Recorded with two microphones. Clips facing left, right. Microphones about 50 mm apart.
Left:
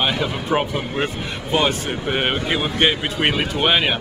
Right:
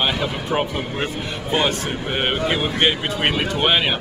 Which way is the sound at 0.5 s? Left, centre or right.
Centre.